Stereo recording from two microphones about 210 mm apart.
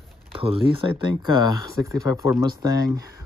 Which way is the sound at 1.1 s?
90° left.